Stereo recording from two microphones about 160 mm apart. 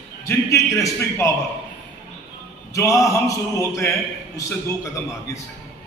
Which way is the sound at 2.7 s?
20° left (ahead or behind).